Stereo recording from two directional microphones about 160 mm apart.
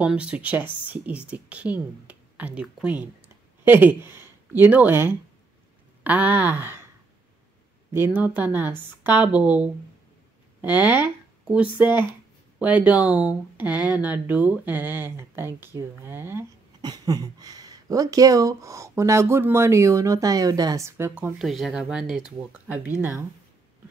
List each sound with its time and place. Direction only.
0.0 s speech: 5° right (ahead or behind)
7.9 s speech: 10° right (ahead or behind)
10.8 s speech: 25° left (ahead or behind)
11.5 s speech: 10° right (ahead or behind)
16.8 s speech: 25° right (ahead or behind)